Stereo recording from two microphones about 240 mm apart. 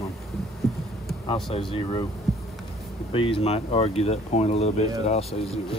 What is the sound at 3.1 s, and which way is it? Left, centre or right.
Speech, left.